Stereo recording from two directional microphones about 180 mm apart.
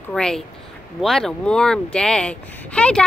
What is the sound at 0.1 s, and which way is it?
Speech, 5° left (ahead or behind).